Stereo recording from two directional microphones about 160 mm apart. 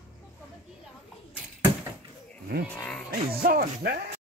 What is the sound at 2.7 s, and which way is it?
Speech, 5° left (ahead or behind).